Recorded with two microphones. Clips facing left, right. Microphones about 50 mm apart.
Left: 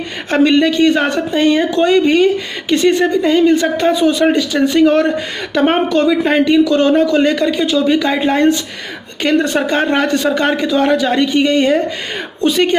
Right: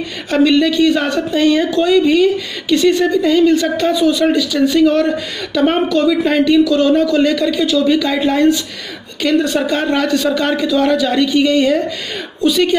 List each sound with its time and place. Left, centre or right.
0.3 s speech: left